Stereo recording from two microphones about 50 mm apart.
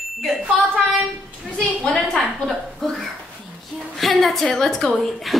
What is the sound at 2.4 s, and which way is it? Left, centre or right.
A woman's voice, centre.